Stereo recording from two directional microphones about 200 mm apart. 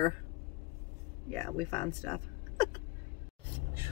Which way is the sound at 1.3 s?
10° left (ahead or behind).